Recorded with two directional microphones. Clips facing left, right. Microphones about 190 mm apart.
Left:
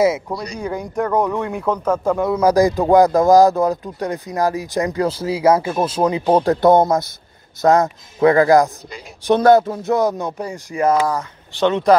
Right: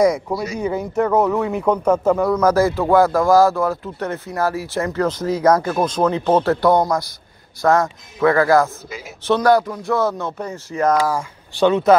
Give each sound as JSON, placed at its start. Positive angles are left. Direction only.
{"t": 0.0, "sound": "speech", "side_deg": 0}
{"t": 2.3, "sound": "speech", "side_deg": 15}
{"t": 11.1, "sound": "speech", "side_deg": -10}